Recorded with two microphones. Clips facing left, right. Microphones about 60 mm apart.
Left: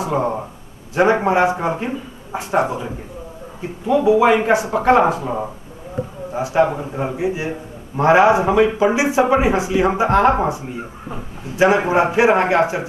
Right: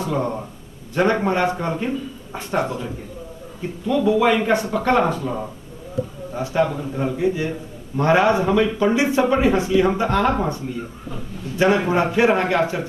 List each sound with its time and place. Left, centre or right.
0.0 s speech: centre